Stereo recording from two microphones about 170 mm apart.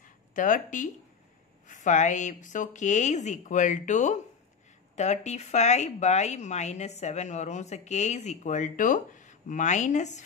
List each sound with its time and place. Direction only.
0.3 s a woman's voice: 50° left (ahead or behind)